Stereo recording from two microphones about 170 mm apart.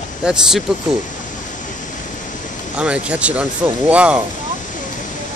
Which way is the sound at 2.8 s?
5° right (ahead or behind).